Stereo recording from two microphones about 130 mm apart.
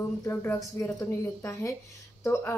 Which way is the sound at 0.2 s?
15° left (ahead or behind).